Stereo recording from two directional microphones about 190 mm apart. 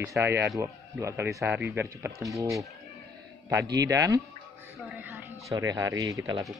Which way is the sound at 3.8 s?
20° right (ahead or behind).